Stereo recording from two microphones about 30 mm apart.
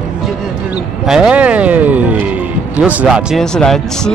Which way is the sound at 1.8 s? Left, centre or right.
Right.